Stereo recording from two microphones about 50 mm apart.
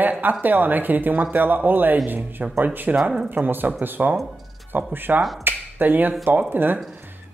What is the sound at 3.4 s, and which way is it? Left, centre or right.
Speech, right.